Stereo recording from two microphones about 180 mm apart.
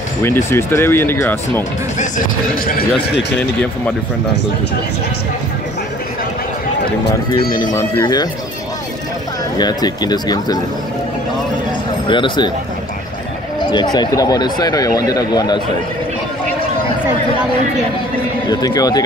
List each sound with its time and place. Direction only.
0.5 s speech: 15° left (ahead or behind)
2.0 s speech: 50° left (ahead or behind); by 3.3 s 65° left (ahead or behind)
7.1 s speech: 55° left (ahead or behind)
7.7 s speech: 20° left (ahead or behind)
9.6 s speech: 20° left (ahead or behind)
12.1 s speech: 25° left (ahead or behind)
13.6 s a sound: 25° left (ahead or behind)
13.9 s speech: 20° left (ahead or behind)
18.5 s speech: 20° left (ahead or behind)